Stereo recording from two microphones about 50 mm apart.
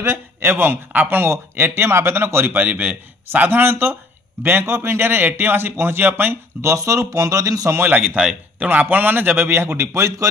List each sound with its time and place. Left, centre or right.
0.0 s speech: right
2.5 s a man's voice: right
6.6 s speech: right
7.8 s a man's voice: right
8.2 s speech: centre
8.9 s a man's voice: right
9.8 s speech: right